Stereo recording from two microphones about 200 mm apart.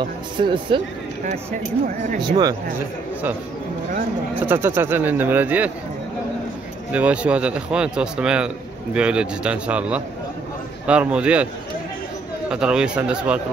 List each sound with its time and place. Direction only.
0.0 s speech: 25° right (ahead or behind)
2.1 s speech: 20° right (ahead or behind)
4.4 s speech: 10° right (ahead or behind)
6.9 s a man's voice: 5° right (ahead or behind)
12.4 s a man's voice: 5° right (ahead or behind)